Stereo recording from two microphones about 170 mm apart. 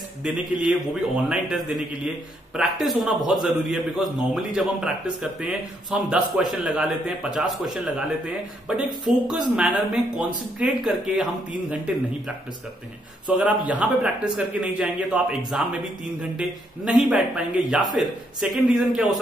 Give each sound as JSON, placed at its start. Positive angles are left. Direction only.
{"t": 0.2, "sound": "a man's voice", "side_deg": -5}
{"t": 13.4, "sound": "a man's voice", "side_deg": -10}